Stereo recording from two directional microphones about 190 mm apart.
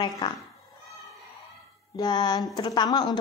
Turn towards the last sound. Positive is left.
turn(degrees=20)  # may be behind; listen again after turning